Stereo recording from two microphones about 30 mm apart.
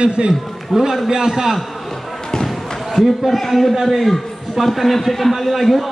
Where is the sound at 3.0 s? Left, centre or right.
Centre.